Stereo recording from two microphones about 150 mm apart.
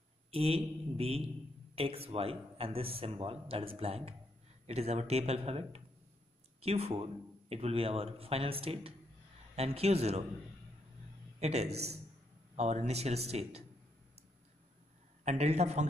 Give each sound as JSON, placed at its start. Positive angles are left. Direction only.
{"t": 0.3, "sound": "speech", "side_deg": -40}
{"t": 11.3, "sound": "a man's voice", "side_deg": -45}
{"t": 15.2, "sound": "speech", "side_deg": -45}